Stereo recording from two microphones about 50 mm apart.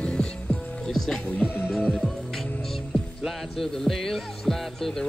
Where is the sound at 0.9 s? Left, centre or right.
Centre.